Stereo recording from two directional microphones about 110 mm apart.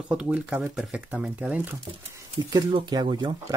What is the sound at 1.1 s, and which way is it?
Speech, 15° right (ahead or behind).